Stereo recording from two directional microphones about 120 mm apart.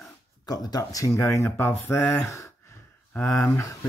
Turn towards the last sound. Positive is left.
turn(degrees=20)  # may be behind; listen again after turning